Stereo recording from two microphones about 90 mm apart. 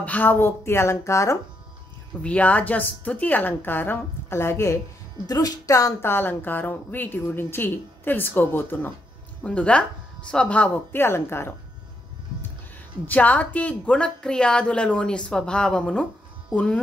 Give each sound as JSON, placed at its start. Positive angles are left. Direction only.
{"t": 0.0, "sound": "a woman's voice", "side_deg": 20}
{"t": 2.2, "sound": "a woman's voice", "side_deg": 15}
{"t": 5.2, "sound": "speech", "side_deg": 45}
{"t": 6.0, "sound": "a woman's voice", "side_deg": 25}
{"t": 11.0, "sound": "a woman's voice", "side_deg": 25}
{"t": 13.0, "sound": "a woman's voice", "side_deg": 15}